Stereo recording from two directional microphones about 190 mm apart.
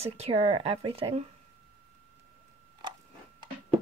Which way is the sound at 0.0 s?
30° right (ahead or behind).